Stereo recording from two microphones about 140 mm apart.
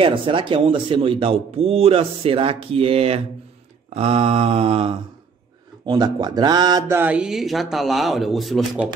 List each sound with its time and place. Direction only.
0.0 s a man's voice: 40° right (ahead or behind)
6.9 s speech: 15° right (ahead or behind)